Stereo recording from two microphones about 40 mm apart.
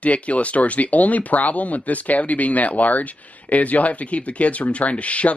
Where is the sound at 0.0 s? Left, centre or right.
Left.